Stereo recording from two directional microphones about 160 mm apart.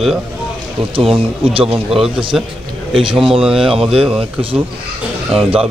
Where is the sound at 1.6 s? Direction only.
5° right (ahead or behind).